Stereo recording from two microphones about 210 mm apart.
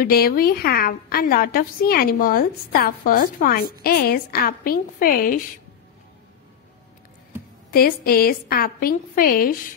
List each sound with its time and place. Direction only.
0.0 s a woman's voice: 45° left (ahead or behind)
7.7 s a woman's voice: 45° left (ahead or behind)